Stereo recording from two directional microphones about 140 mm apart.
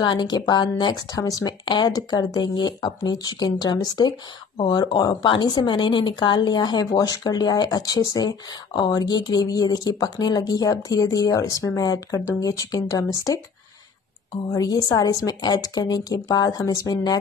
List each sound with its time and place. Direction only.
0.0 s a woman's voice: 30° left (ahead or behind)
14.5 s a woman's voice: 25° left (ahead or behind)